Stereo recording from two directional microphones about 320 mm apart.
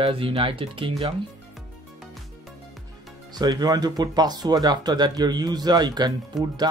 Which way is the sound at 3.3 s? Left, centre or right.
Centre.